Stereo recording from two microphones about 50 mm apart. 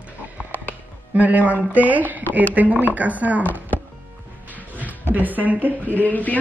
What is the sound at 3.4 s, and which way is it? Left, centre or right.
Speech, left.